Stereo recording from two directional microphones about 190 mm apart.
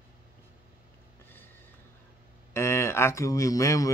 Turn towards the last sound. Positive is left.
turn(degrees=15)  # may be behind; listen again after turning